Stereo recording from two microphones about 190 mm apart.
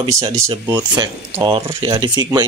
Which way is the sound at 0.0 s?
15° right (ahead or behind).